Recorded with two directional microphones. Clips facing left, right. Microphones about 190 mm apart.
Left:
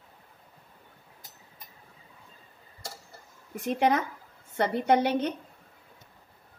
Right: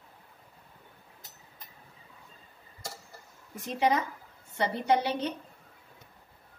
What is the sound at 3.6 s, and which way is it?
Speech, 55° left (ahead or behind).